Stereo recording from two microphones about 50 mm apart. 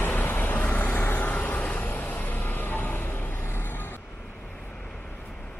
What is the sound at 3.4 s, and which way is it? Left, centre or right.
Vehicle, left.